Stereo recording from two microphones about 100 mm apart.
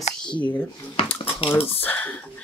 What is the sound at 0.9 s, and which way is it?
Dishes, 70° left (ahead or behind).